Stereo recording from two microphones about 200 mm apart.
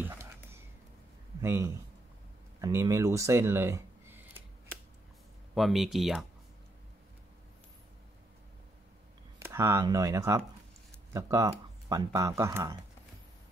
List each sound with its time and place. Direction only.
0.0 s whispering: 10° right (ahead or behind)
1.4 s speech: 15° right (ahead or behind)
5.5 s speech: centre (ahead or behind)
9.4 s speech: 15° right (ahead or behind)